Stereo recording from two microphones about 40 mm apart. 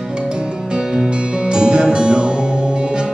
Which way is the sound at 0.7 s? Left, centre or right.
Centre.